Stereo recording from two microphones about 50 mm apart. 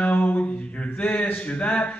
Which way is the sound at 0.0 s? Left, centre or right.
Left.